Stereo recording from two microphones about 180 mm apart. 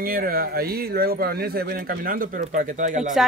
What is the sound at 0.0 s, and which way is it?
Speech, 55° right (ahead or behind).